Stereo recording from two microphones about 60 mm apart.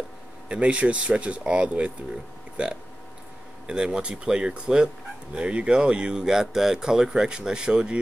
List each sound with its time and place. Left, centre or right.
0.5 s speech: right